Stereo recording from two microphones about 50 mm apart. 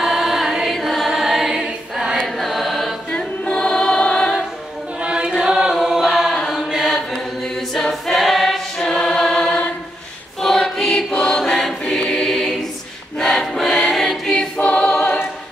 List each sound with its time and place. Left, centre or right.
0.0 s music: centre
0.7 s choir: centre
2.2 s chant: centre
3.1 s choir: centre
5.0 s chant: centre
6.3 s chant: centre
6.7 s chant: centre
7.7 s choir: centre
8.7 s music: centre
10.4 s choir: centre
14.6 s choir: left